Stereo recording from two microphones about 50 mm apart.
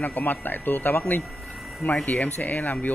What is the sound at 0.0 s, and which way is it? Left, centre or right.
Speech, left.